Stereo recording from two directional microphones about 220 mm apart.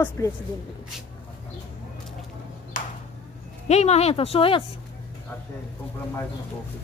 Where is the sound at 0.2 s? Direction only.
15° left (ahead or behind).